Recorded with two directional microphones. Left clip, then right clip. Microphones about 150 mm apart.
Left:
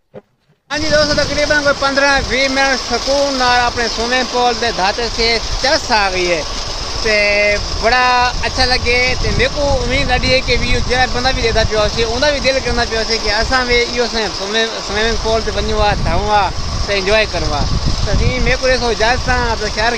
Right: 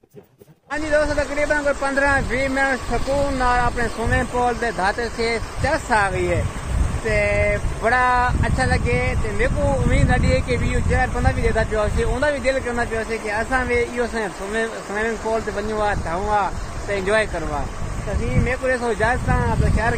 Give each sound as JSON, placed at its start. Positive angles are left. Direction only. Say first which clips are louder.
{"t": 1.7, "sound": "speech", "louder": "left 6 dB", "side_deg": 15}
{"t": 18.5, "sound": "speech", "louder": "left 7 dB", "side_deg": 15}